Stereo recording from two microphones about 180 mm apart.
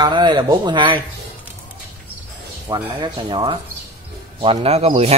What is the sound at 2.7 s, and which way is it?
A man's voice, 25° right (ahead or behind).